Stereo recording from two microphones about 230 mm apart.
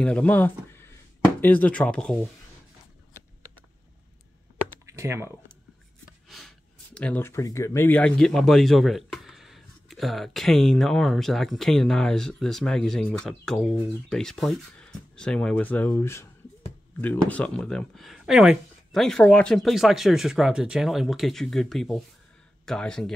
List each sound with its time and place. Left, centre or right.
0.0 s speech: centre
4.8 s computer keyboard: centre
6.0 s speech: centre